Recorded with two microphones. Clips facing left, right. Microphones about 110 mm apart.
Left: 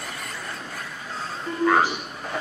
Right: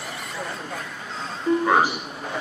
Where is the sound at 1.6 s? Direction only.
15° right (ahead or behind).